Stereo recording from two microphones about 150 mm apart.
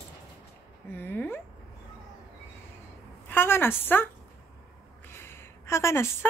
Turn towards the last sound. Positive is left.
turn(degrees=20)  # may be behind; listen again after turning